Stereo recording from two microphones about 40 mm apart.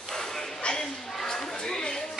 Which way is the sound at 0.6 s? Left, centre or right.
Centre.